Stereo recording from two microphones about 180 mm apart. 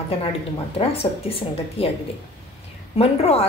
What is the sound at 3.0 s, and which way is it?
Speech, 35° left (ahead or behind).